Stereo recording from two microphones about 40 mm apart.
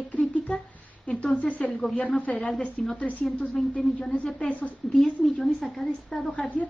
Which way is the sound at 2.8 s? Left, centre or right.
Centre.